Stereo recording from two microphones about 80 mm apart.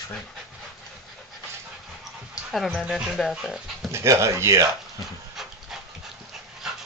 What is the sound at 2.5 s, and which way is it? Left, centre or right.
Speech, centre.